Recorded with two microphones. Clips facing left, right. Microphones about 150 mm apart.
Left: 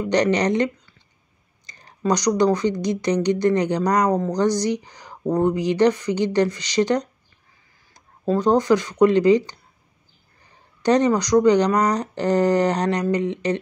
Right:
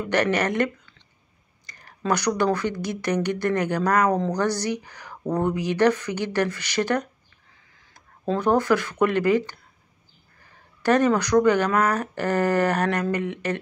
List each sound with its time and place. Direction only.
0.0 s speech: 15° left (ahead or behind)